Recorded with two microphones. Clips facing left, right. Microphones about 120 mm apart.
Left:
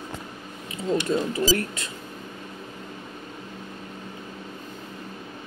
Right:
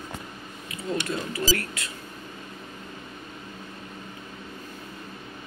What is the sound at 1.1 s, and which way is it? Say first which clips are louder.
Speech: left 5 dB; 25° left (ahead or behind).